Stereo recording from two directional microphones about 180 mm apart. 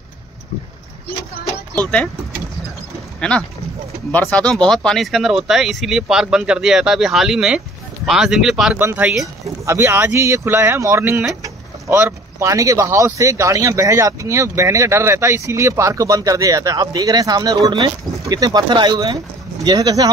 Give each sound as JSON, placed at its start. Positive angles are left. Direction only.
{"t": 3.2, "sound": "speech", "side_deg": 5}